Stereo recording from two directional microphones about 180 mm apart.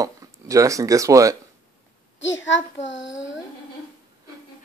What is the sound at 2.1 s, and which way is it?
A child's voice, 90° left.